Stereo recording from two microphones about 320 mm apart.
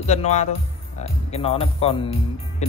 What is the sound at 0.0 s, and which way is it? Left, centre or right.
Speech, left.